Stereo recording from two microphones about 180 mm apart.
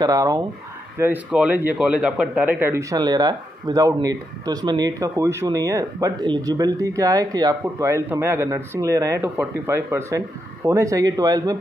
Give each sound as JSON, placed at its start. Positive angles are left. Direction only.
{"t": 0.0, "sound": "speech", "side_deg": -20}
{"t": 0.9, "sound": "a man's voice", "side_deg": -10}